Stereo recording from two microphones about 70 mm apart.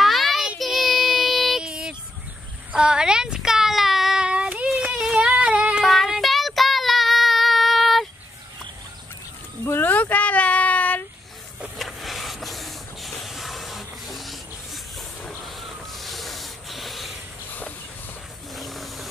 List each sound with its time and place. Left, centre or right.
0.0 s child singing: centre
4.9 s a sound: centre
5.9 s child singing: centre
9.7 s a sound: left
11.7 s spray: centre
18.5 s ratchet: centre